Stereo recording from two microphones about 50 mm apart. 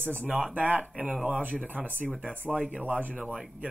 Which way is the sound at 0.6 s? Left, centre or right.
Right.